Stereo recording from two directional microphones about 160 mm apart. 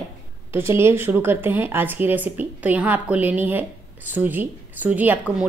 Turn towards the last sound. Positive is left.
turn(degrees=-10)  # may be behind; listen again after turning